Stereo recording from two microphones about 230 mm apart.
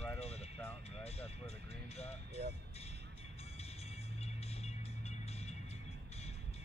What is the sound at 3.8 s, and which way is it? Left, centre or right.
Music, left.